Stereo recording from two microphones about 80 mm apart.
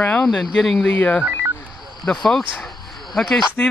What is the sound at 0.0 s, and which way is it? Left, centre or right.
Speech, centre.